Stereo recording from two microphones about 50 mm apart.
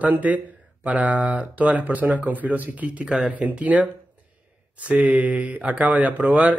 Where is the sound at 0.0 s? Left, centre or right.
Right.